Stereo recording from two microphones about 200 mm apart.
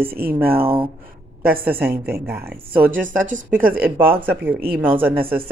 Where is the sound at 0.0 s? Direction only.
50° right (ahead or behind).